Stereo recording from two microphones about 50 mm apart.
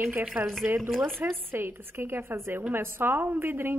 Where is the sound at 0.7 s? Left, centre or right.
Centre.